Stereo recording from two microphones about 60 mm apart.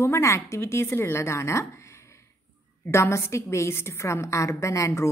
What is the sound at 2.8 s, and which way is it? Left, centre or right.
A woman's voice, left.